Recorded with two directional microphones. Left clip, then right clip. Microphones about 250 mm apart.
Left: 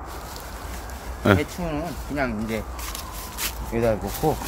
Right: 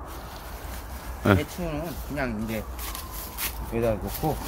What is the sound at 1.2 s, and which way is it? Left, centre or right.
Speech, centre.